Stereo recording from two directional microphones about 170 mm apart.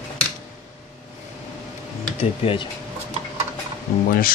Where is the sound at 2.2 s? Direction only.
30° left (ahead or behind).